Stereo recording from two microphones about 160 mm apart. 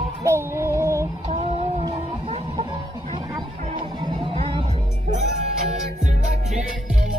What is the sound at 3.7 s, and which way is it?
Music, 30° right (ahead or behind).